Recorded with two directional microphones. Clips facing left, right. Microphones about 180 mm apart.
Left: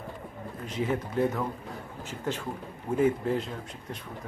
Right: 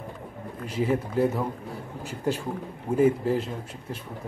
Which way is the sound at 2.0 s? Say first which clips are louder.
Right 5 dB; 10° right (ahead or behind).